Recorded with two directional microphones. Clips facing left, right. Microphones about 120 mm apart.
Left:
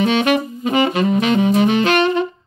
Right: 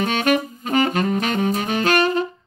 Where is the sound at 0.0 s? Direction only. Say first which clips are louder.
Left 4 dB; 45° right (ahead or behind).